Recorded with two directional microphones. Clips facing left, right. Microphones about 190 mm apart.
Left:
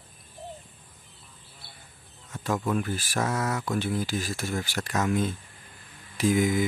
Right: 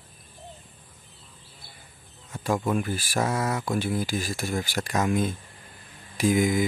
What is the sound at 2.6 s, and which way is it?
Speech, 10° right (ahead or behind).